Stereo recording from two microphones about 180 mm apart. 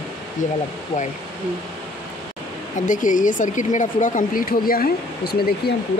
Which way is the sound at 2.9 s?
45° left (ahead or behind).